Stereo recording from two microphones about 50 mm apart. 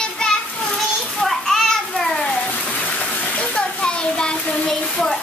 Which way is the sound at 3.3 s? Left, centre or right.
Left.